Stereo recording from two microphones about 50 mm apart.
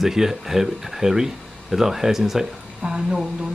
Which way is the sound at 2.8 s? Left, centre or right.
Centre.